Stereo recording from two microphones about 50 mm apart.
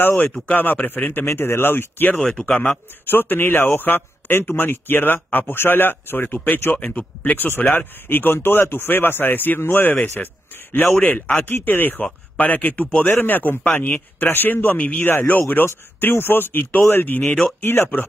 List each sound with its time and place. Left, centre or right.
0.0 s speech: left
0.5 s speech: left
1.2 s speech: left
2.3 s speech: centre
3.1 s speech: left
10.0 s speech: left
15.6 s speech: left
17.6 s speech: left